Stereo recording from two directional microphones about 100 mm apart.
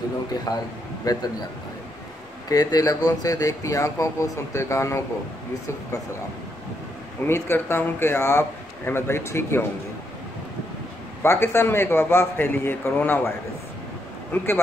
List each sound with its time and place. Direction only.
0.5 s speech: 40° left (ahead or behind)
2.5 s speech: 40° left (ahead or behind)
7.2 s a man's voice: 25° left (ahead or behind)
11.2 s a man's voice: 25° left (ahead or behind)
14.3 s a man's voice: 20° left (ahead or behind)